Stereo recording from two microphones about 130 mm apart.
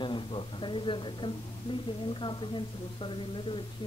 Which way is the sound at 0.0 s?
40° left (ahead or behind).